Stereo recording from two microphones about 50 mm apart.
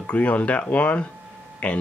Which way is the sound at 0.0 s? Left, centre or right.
Left.